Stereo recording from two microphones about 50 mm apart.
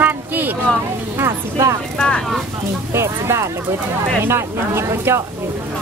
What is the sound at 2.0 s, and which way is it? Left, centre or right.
Speech, centre.